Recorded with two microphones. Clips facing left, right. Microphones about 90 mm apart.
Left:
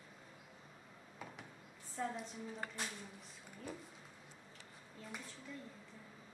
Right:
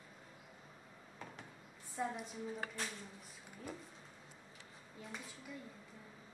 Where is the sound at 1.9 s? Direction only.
10° right (ahead or behind).